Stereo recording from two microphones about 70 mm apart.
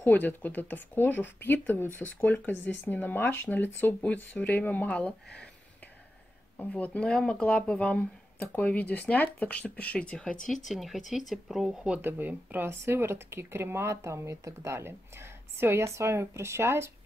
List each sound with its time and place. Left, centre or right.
0.0 s speech: left
6.6 s speech: left
10.7 s speech: centre
12.0 s speech: right
12.6 s speech: right